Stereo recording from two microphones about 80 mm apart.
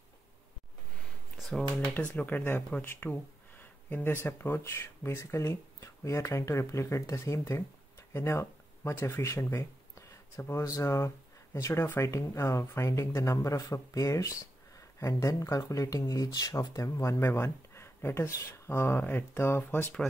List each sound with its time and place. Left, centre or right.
2.1 s speech: left